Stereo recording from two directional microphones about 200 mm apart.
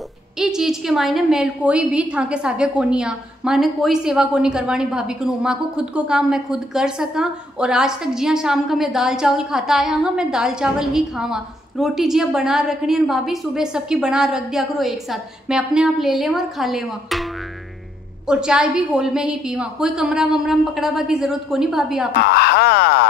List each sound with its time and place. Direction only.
0.4 s a woman's voice: centre (ahead or behind)
22.2 s speech: 55° left (ahead or behind)